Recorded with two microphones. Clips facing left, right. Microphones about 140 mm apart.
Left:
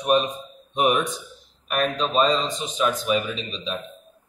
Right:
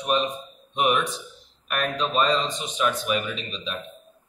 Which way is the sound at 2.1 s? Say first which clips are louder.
Left 2 dB; 30° left (ahead or behind).